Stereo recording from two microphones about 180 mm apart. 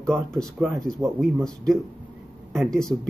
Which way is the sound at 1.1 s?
Centre (ahead or behind).